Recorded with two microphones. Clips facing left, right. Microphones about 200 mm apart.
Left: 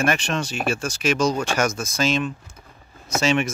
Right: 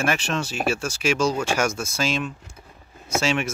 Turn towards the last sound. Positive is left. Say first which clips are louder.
# left 3 dB
turn(degrees=-10)  # may be behind; listen again after turning